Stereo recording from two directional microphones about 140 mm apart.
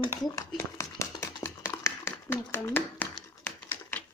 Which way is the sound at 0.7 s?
20° left (ahead or behind).